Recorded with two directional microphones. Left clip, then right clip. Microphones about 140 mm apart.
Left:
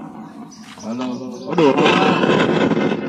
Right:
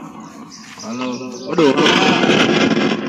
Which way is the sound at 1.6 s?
10° right (ahead or behind).